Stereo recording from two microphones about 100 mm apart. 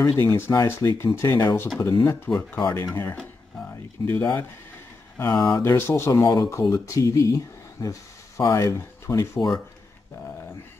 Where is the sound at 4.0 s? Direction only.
25° left (ahead or behind).